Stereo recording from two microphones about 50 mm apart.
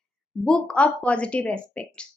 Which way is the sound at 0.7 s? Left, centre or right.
Left.